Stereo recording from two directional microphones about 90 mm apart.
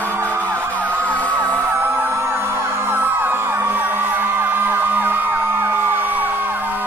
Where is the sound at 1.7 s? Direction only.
25° right (ahead or behind).